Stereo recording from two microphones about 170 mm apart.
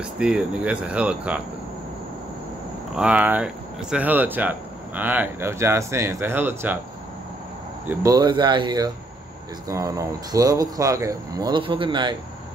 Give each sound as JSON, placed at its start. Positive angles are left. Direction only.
{"t": 0.0, "sound": "speech", "side_deg": -5}
{"t": 3.0, "sound": "speech", "side_deg": -10}
{"t": 7.8, "sound": "speech", "side_deg": -10}
{"t": 8.1, "sound": "speech", "side_deg": -25}